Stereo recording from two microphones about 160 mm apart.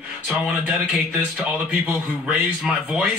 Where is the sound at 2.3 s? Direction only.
5° right (ahead or behind).